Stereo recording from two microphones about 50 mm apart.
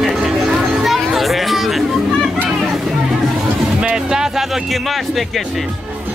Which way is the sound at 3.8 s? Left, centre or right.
Centre.